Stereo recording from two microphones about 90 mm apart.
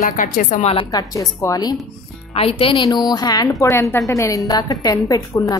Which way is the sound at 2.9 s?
50° left (ahead or behind).